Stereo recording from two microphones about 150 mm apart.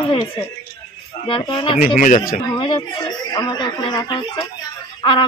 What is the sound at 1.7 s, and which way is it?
Speech, 70° left (ahead or behind).